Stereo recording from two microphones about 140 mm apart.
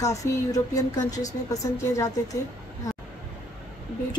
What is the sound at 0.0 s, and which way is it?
A woman's voice, 25° left (ahead or behind).